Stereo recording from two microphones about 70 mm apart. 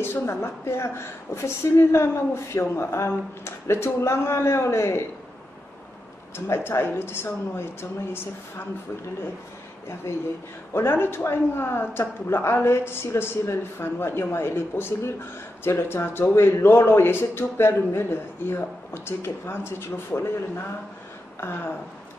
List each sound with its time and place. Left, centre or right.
0.0 s speech: left
6.3 s speech: left
10.1 s speech: left